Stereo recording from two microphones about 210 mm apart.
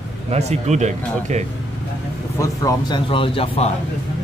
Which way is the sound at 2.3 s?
15° left (ahead or behind).